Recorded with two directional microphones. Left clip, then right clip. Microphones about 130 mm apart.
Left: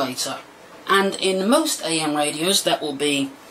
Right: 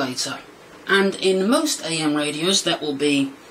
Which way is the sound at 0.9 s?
20° left (ahead or behind).